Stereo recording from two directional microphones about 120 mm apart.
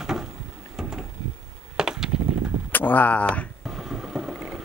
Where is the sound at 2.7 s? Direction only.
15° left (ahead or behind).